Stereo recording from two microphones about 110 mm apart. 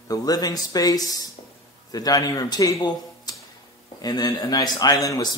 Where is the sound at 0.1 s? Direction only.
35° left (ahead or behind).